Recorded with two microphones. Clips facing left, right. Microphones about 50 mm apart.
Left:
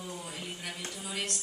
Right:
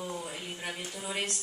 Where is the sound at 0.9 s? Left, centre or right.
Right.